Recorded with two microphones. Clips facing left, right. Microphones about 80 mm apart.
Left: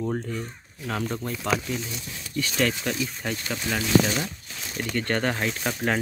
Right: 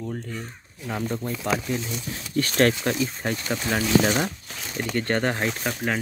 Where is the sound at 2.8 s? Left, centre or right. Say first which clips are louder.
Right 3 dB; right.